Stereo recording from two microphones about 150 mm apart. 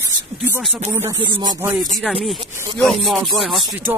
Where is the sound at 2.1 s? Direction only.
5° left (ahead or behind).